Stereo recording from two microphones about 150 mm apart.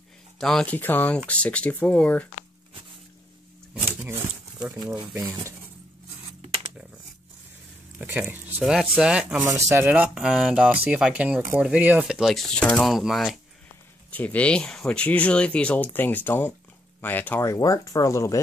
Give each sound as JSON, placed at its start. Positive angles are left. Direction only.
{"t": 0.4, "sound": "speech", "side_deg": 5}
{"t": 5.2, "sound": "speech", "side_deg": -20}
{"t": 8.0, "sound": "speech", "side_deg": -15}
{"t": 9.4, "sound": "speech", "side_deg": -20}
{"t": 9.8, "sound": "speech", "side_deg": -10}
{"t": 14.1, "sound": "speech", "side_deg": 10}